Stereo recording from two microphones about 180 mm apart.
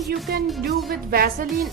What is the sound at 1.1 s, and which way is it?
Speech, 55° right (ahead or behind).